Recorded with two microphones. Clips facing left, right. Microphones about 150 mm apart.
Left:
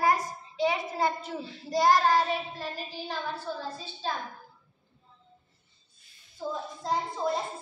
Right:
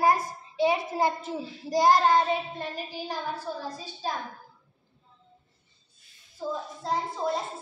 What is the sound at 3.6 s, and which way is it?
Speech, 10° right (ahead or behind).